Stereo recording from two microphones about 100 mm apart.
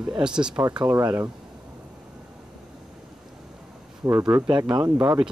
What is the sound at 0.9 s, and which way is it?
Speech, 40° right (ahead or behind).